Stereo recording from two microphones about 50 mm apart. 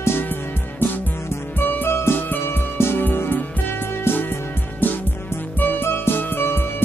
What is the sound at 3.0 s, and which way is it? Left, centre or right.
Music, left.